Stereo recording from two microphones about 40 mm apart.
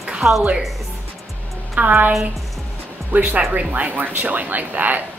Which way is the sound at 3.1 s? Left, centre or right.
Right.